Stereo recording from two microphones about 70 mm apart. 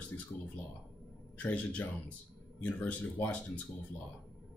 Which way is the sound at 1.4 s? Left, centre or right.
Left.